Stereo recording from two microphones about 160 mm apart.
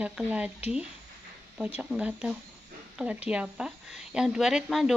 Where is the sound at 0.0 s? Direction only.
10° right (ahead or behind).